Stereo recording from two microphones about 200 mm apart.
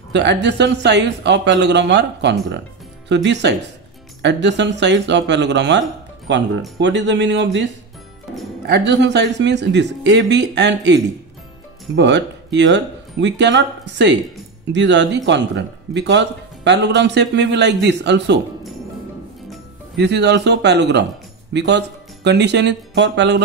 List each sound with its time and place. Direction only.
0.1 s speech: 60° right (ahead or behind)
8.6 s speech: 55° right (ahead or behind)
20.0 s speech: 55° right (ahead or behind)